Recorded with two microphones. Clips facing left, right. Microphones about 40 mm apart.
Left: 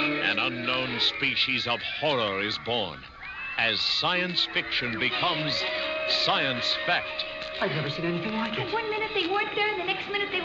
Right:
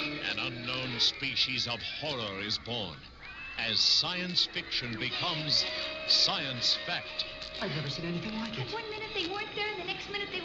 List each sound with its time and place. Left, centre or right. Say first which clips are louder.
0.0 s a man's voice: left 9 dB; left